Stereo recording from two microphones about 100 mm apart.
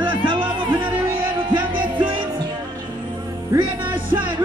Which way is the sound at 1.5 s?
50° right (ahead or behind).